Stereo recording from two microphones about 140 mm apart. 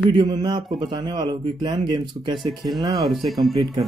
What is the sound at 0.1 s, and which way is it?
Speech, 30° right (ahead or behind).